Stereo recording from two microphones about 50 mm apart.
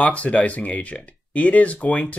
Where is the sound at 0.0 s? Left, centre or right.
Left.